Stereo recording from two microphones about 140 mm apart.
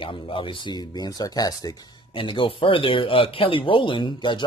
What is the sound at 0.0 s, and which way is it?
Speech, 40° left (ahead or behind).